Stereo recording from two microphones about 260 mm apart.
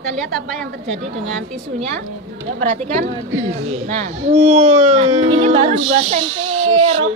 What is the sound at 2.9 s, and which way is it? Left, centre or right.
Speech, right.